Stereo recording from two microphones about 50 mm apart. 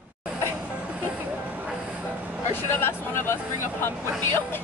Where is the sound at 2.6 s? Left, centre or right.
Left.